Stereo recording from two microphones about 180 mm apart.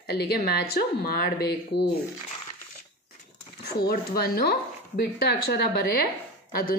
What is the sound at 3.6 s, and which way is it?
A woman's voice, 60° left (ahead or behind).